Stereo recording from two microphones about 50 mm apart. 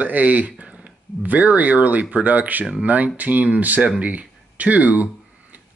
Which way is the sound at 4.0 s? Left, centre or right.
Right.